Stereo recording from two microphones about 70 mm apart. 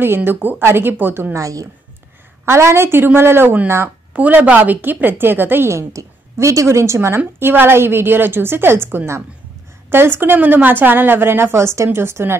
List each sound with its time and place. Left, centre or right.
0.0 s a woman's voice: right
1.3 s a woman's voice: right
2.4 s a woman's voice: right
4.1 s a woman's voice: right